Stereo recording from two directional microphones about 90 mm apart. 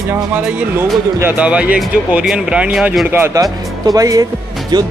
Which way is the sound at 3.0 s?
25° right (ahead or behind).